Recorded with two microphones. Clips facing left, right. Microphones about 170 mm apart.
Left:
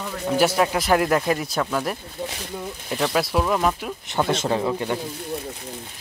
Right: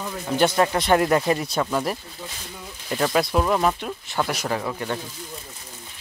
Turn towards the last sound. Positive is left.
turn(degrees=15)  # may be behind; listen again after turning